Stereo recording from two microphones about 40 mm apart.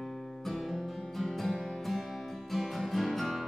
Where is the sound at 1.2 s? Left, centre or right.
Centre.